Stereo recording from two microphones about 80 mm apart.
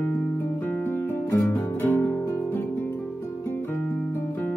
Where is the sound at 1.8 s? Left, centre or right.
Left.